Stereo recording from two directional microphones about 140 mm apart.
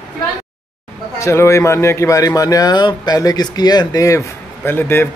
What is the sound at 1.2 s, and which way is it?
Speech, 20° left (ahead or behind).